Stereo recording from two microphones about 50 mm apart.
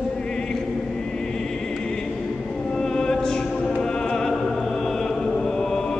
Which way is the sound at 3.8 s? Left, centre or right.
Centre.